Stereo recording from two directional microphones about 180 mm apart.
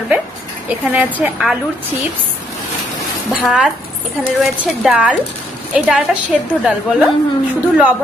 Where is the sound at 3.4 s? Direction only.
5° right (ahead or behind).